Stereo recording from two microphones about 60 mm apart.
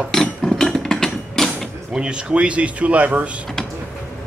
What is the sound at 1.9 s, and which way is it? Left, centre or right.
Speech, centre.